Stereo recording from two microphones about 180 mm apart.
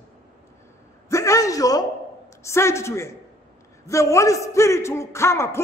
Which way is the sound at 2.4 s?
15° left (ahead or behind).